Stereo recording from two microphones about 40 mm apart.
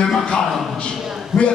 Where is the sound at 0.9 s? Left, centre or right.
Centre.